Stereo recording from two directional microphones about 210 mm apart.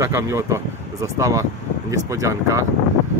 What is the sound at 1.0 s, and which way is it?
Speech, 15° right (ahead or behind).